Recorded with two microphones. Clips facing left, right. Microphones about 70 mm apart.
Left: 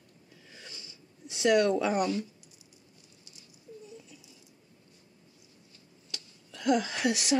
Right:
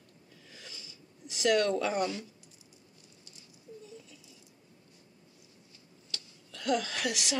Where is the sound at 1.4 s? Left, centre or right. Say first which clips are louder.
Left 3 dB; centre.